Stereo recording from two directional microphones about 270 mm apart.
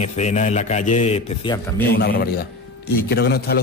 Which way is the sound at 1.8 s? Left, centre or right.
Left.